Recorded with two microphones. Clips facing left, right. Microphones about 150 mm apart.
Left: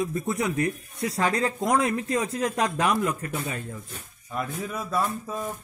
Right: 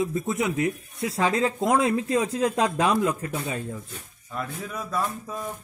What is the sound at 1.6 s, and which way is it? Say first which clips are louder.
Speech: right 2 dB; 25° right (ahead or behind).